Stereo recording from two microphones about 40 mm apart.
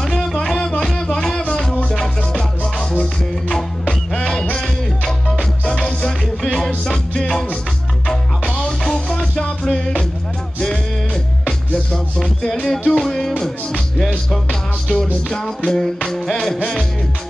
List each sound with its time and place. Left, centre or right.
0.4 s music: centre
12.6 s music: centre